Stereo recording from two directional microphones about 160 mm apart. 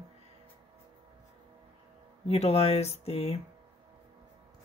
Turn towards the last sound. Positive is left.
turn(degrees=40)  # may be behind; listen again after turning